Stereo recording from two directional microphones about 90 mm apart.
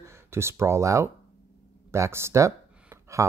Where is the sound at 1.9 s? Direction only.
30° right (ahead or behind).